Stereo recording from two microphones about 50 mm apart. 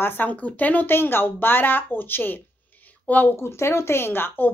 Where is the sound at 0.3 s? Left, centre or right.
Left.